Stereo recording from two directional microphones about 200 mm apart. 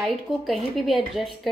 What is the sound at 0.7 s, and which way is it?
Speech, centre (ahead or behind).